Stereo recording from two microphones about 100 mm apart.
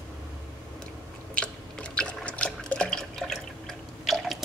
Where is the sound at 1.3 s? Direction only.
10° left (ahead or behind).